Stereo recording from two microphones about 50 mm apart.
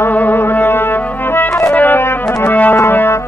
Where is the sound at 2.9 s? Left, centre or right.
Left.